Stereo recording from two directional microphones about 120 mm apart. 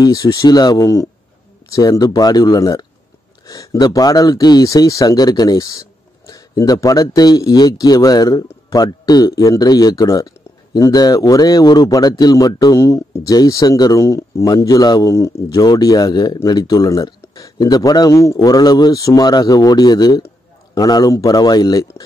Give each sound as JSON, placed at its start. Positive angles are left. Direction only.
{"t": 0.0, "sound": "speech", "side_deg": 30}